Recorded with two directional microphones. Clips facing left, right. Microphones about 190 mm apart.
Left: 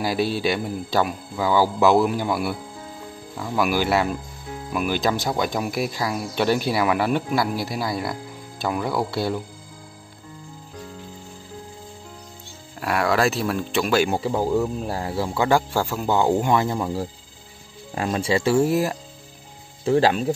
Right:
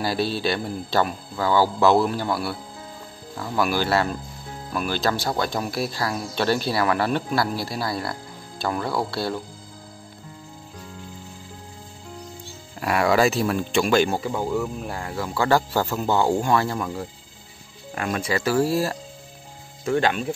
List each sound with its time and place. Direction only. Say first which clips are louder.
0.0 s speech: left 2 dB; 15° left (ahead or behind)
12.8 s speech: right 1 dB; centre (ahead or behind)
14.1 s speech: left 3 dB; 30° left (ahead or behind)
15.4 s speech: even; 10° left (ahead or behind)
17.9 s speech: left 3 dB; 30° left (ahead or behind)
19.8 s speech: left 4 dB; 30° left (ahead or behind)